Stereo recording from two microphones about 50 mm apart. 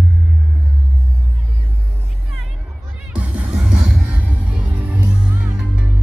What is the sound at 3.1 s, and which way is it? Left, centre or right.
Music, right.